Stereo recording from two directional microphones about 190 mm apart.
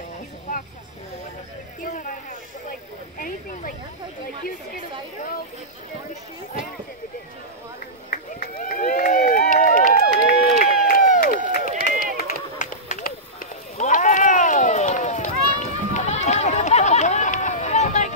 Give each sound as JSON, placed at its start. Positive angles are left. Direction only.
{"t": 1.8, "sound": "speech", "side_deg": 45}
{"t": 3.2, "sound": "speech", "side_deg": 50}
{"t": 8.1, "sound": "run", "side_deg": 45}